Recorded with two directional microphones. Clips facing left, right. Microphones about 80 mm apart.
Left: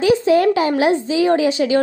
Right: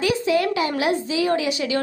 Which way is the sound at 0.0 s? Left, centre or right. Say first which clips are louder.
Left 7 dB; left.